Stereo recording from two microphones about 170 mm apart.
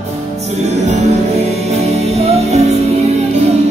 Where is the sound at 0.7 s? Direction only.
40° right (ahead or behind).